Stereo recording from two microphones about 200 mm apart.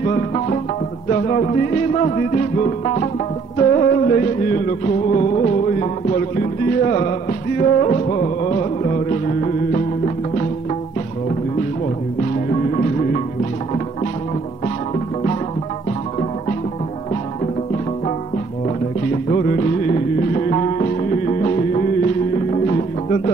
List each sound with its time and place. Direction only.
0.0 s music: 35° left (ahead or behind)
12.4 s music: 40° left (ahead or behind)
19.2 s music: 40° left (ahead or behind)